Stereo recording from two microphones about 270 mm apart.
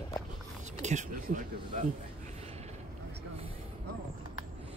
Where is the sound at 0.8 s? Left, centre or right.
Right.